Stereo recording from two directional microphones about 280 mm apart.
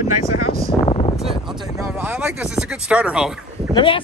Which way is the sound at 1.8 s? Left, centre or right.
Centre.